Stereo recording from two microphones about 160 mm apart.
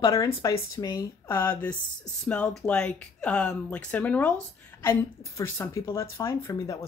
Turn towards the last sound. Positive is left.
turn(degrees=20)  # may be behind; listen again after turning